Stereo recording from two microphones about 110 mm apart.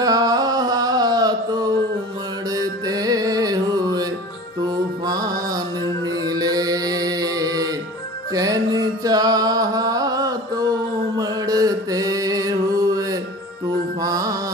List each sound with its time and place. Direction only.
0.0 s music: 35° right (ahead or behind)